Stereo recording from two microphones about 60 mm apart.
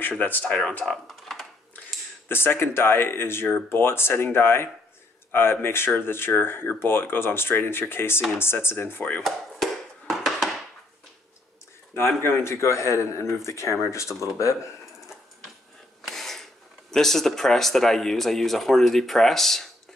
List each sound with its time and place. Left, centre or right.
0.2 s speech: left
1.0 s computer keyboard: centre
2.2 s speech: left
9.2 s a sound: centre
11.9 s speech: left
16.1 s a sound: centre
16.9 s speech: centre